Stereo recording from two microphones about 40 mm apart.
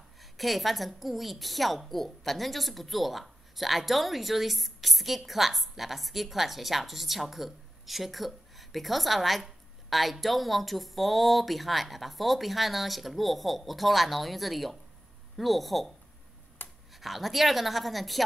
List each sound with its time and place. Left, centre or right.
0.2 s a woman's voice: centre
16.6 s a sound: left
16.9 s a woman's voice: centre